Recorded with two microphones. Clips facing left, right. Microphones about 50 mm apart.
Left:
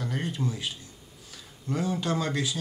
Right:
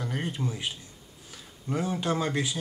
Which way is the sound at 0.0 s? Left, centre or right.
Centre.